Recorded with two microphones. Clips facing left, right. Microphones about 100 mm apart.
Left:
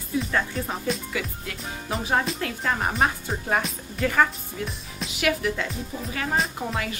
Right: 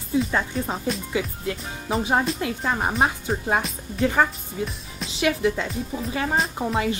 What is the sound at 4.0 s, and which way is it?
A woman's voice, 20° right (ahead or behind).